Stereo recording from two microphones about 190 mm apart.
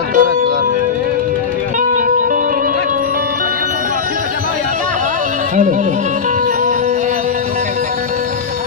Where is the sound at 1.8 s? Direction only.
45° right (ahead or behind).